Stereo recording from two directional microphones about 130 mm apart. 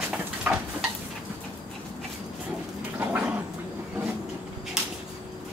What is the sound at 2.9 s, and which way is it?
Gargling, 15° right (ahead or behind).